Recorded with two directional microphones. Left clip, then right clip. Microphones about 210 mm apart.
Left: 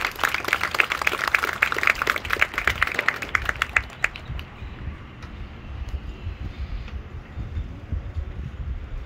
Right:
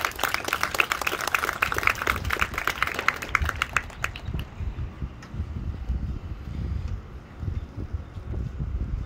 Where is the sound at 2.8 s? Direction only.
25° right (ahead or behind).